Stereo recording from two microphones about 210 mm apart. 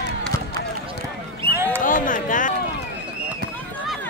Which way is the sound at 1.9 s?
40° left (ahead or behind).